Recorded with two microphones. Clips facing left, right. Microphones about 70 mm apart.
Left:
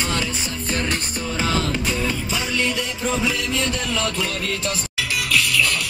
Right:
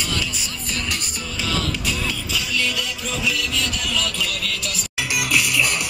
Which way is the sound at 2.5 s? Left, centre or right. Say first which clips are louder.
Left 1 dB; left.